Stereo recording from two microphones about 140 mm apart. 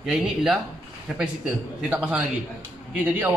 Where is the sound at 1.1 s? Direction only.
5° right (ahead or behind).